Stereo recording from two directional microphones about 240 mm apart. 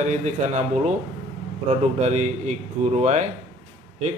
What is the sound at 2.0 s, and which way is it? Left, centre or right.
Speech, right.